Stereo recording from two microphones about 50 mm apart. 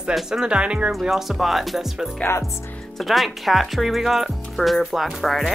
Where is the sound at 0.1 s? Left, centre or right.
Centre.